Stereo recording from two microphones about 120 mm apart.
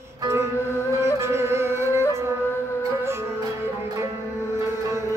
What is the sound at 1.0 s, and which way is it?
Music, 20° right (ahead or behind).